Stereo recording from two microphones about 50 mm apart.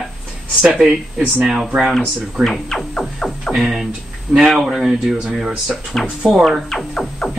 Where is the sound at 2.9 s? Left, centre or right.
Centre.